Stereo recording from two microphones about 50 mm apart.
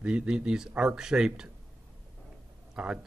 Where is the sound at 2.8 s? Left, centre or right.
Centre.